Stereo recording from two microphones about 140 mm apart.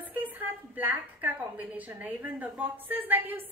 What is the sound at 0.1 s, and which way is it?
A woman's voice, 10° right (ahead or behind).